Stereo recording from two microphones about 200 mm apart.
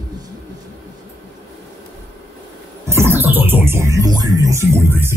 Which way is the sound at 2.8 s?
10° right (ahead or behind).